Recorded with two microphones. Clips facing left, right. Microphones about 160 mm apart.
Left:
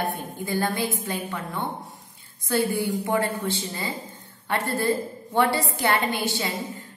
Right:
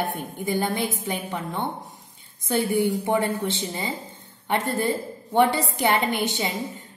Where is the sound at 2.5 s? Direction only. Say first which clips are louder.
Right 2 dB; 20° right (ahead or behind).